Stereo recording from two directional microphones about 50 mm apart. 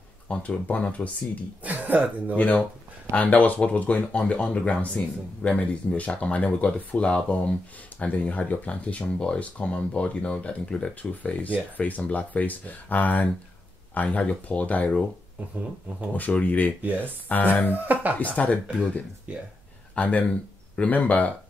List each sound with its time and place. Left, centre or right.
0.3 s speech: left
1.6 s speech: right
3.1 s speech: left
11.0 s speech: left
16.1 s speech: left
16.8 s speech: right
17.3 s speech: left
17.6 s speech: right
18.3 s speech: left
19.3 s speech: right
20.0 s speech: left